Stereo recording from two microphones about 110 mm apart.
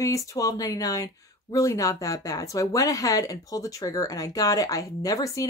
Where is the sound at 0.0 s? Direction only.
30° left (ahead or behind).